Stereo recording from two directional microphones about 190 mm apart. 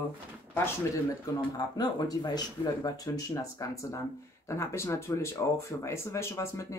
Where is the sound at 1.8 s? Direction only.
20° left (ahead or behind).